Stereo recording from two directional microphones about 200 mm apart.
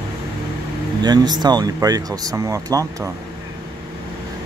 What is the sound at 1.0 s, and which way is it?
Speech, 20° right (ahead or behind).